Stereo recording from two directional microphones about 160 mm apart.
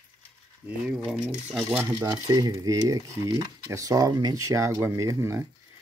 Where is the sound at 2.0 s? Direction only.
25° right (ahead or behind).